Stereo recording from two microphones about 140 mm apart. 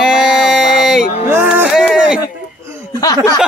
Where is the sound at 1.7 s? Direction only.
5° right (ahead or behind).